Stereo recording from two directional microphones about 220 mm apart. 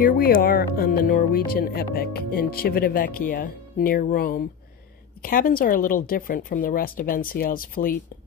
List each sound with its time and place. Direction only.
0.0 s speech: 40° left (ahead or behind)